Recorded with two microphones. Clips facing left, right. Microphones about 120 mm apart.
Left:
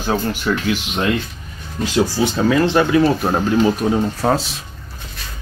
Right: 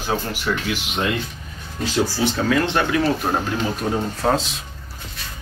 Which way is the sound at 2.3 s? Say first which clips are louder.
Left 6 dB; 10° left (ahead or behind).